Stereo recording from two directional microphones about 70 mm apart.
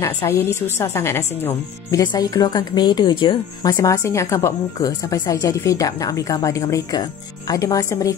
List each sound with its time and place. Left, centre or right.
0.0 s a woman's voice: left
1.9 s speech: left
3.8 s speech: left
4.7 s speech: left
6.9 s speech: left